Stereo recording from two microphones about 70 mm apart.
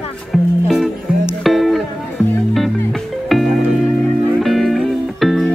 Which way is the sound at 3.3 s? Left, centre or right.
Centre.